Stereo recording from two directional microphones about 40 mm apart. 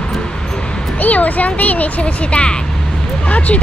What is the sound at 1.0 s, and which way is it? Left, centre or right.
Speech, left.